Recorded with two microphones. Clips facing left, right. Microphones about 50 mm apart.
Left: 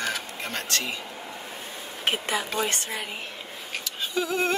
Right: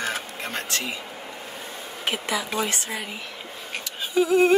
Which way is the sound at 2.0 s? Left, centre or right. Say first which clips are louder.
Even; left.